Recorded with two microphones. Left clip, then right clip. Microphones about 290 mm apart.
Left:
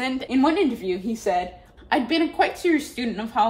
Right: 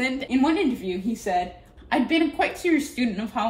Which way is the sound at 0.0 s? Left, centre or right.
Centre.